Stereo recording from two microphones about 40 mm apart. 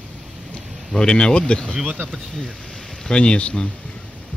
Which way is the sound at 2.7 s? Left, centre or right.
Centre.